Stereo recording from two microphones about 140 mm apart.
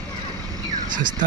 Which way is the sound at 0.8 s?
30° right (ahead or behind).